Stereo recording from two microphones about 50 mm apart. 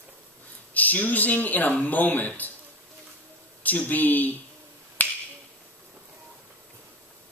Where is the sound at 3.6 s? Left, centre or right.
Left.